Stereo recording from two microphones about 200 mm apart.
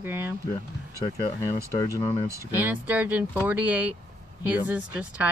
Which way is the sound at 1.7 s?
15° left (ahead or behind).